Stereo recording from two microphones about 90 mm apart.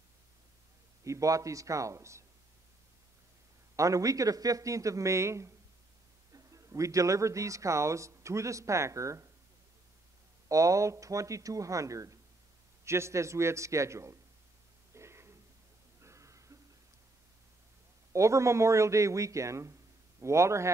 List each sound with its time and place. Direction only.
1.0 s a man's voice: 35° right (ahead or behind)
3.7 s a man's voice: 35° right (ahead or behind)
10.5 s a man's voice: 40° right (ahead or behind)
15.0 s a sound: 30° right (ahead or behind)
18.1 s a man's voice: 35° right (ahead or behind)